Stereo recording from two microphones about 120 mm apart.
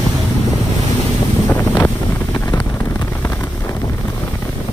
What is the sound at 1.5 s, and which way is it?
Wind noise, 15° left (ahead or behind).